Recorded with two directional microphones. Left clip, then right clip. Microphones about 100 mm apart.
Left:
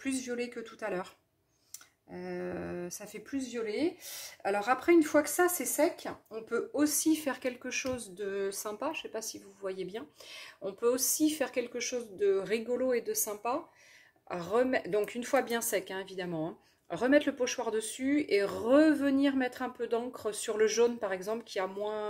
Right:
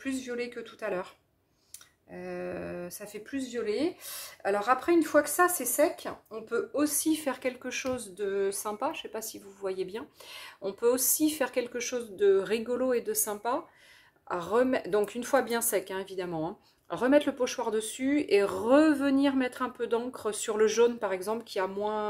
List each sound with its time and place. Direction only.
0.0 s speech: 5° right (ahead or behind)
2.1 s speech: 5° left (ahead or behind)
3.3 s speech: 20° right (ahead or behind)
4.8 s speech: 5° right (ahead or behind)
6.3 s speech: 10° right (ahead or behind); by 22.0 s 30° right (ahead or behind)